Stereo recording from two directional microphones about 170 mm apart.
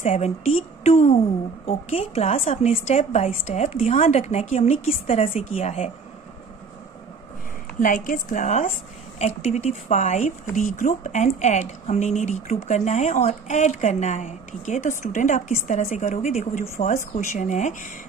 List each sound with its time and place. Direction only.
0.0 s a woman's voice: 40° left (ahead or behind)
7.8 s a woman's voice: 55° left (ahead or behind)